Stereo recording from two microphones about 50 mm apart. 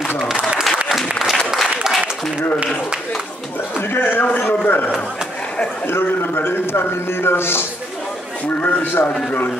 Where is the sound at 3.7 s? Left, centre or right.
Left.